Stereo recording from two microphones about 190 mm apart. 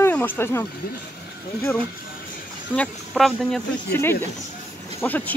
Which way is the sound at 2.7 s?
Centre (ahead or behind).